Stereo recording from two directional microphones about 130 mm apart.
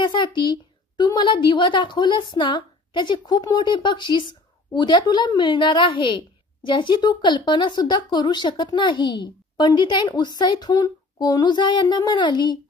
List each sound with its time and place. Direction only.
0.0 s a woman's voice: 35° left (ahead or behind)